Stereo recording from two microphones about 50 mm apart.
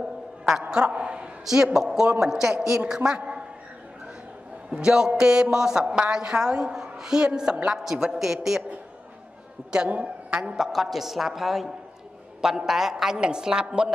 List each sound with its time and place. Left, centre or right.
0.5 s a sound: centre
1.4 s a woman's voice: centre
3.2 s a sound: right
4.6 s a woman's voice: centre
9.8 s a woman's voice: right
10.5 s a woman's voice: centre